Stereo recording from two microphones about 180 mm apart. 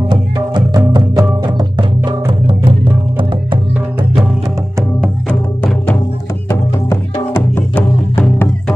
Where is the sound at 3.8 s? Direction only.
10° right (ahead or behind).